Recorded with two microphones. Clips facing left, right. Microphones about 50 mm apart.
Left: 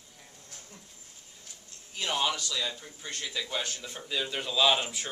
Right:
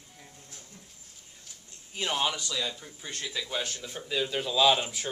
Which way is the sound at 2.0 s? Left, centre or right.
Centre.